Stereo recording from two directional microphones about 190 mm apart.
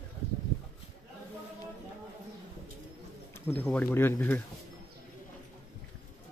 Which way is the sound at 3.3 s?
10° left (ahead or behind).